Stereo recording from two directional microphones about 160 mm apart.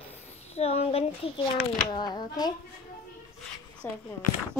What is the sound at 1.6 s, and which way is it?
Speech, 25° left (ahead or behind).